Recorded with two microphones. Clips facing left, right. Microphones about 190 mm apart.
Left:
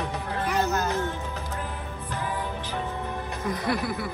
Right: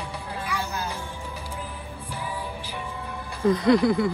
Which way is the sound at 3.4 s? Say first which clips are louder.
Right 10 dB; 25° right (ahead or behind).